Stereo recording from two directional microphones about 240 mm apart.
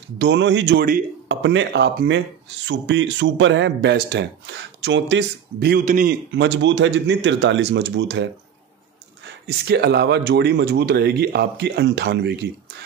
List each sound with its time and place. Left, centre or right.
0.2 s speech: right
1.3 s speech: right
6.3 s speech: right
9.7 s speech: right